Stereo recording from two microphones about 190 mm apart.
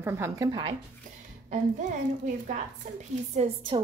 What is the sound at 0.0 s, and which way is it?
Speech, 15° right (ahead or behind).